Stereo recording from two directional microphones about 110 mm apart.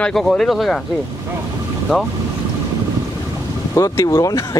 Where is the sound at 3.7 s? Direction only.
30° left (ahead or behind).